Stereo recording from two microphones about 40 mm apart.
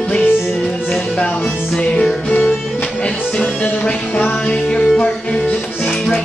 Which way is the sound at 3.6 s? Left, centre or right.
Left.